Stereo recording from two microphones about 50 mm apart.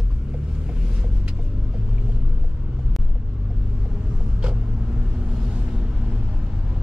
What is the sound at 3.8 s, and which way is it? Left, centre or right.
Vehicle, centre.